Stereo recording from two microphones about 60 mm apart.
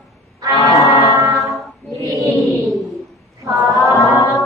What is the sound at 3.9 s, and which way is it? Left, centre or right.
Music, left.